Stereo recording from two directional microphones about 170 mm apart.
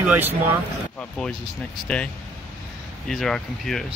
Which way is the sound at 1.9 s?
5° left (ahead or behind).